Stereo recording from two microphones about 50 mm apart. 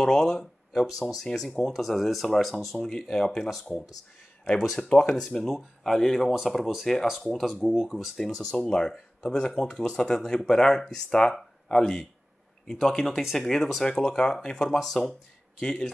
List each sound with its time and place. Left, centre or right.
0.0 s speech: centre
4.5 s speech: centre
5.1 s speech: centre
8.2 s speech: centre
13.8 s speech: centre